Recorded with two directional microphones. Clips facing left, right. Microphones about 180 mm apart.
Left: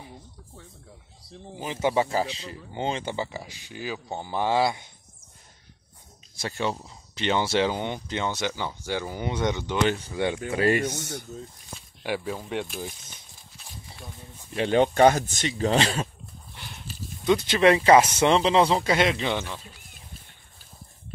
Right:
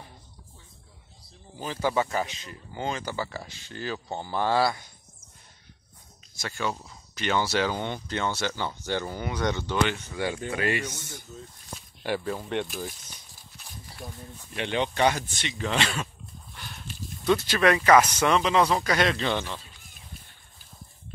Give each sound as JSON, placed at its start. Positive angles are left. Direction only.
{"t": 1.6, "sound": "speech", "side_deg": 20}
{"t": 6.3, "sound": "speech", "side_deg": 30}
{"t": 9.2, "sound": "speech", "side_deg": 20}
{"t": 10.9, "sound": "speech", "side_deg": 70}
{"t": 12.0, "sound": "speech", "side_deg": 5}
{"t": 14.5, "sound": "speech", "side_deg": 40}
{"t": 16.5, "sound": "horse", "side_deg": 20}
{"t": 17.5, "sound": "speech", "side_deg": 25}
{"t": 19.3, "sound": "speech", "side_deg": 5}